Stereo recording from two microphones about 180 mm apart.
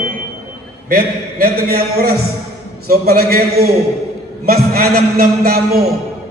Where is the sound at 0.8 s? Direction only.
60° right (ahead or behind).